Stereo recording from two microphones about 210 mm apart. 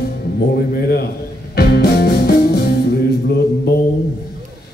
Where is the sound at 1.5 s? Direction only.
50° left (ahead or behind).